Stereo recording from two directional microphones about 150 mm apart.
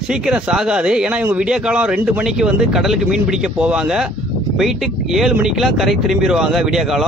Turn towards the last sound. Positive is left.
turn(degrees=0)  # may be behind; listen again after turning